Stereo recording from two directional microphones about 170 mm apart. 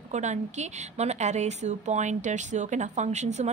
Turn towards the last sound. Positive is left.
turn(degrees=-40)  # may be behind; listen again after turning